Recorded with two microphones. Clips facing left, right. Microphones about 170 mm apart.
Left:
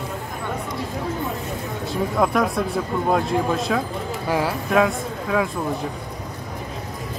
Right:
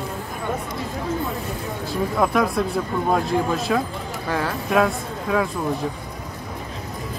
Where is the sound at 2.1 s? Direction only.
Centre (ahead or behind).